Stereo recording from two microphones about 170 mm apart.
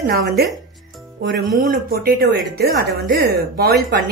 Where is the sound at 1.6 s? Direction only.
55° right (ahead or behind).